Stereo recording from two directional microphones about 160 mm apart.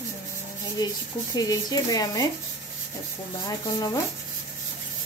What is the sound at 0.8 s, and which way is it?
Speech, 25° left (ahead or behind).